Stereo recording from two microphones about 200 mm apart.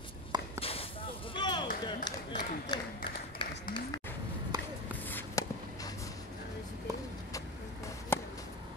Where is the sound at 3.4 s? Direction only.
25° left (ahead or behind).